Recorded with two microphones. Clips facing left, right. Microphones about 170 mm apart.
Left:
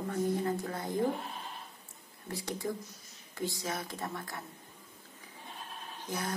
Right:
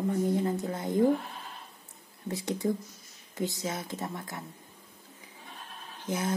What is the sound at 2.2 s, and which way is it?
Speech, 20° right (ahead or behind).